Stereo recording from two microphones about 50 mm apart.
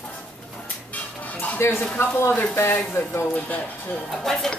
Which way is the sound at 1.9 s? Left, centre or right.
Left.